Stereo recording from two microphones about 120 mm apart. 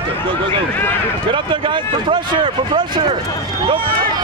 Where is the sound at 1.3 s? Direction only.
40° right (ahead or behind).